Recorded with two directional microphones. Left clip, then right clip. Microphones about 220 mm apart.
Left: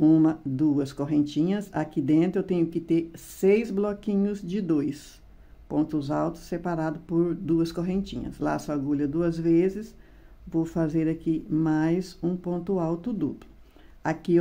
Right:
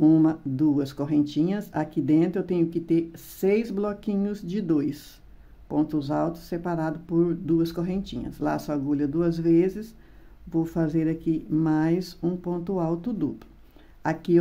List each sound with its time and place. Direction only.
0.0 s speech: centre (ahead or behind)